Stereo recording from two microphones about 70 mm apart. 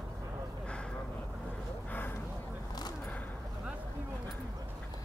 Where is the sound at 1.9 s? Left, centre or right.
Left.